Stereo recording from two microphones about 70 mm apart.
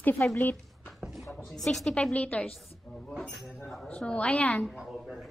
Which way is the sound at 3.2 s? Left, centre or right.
Centre.